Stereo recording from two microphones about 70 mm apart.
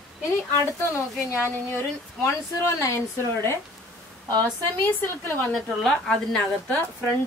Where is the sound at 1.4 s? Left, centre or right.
Left.